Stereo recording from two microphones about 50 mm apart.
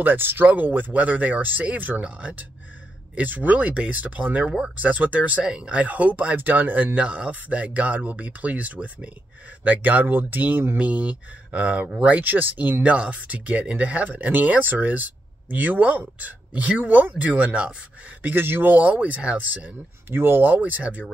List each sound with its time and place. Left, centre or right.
0.0 s speech: right
2.0 s speech: right
3.2 s speech: right
10.8 s speech: right
12.8 s speech: right
18.2 s speech: right
20.1 s speech: right